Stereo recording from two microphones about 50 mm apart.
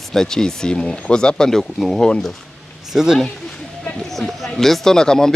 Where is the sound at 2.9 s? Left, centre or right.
Centre.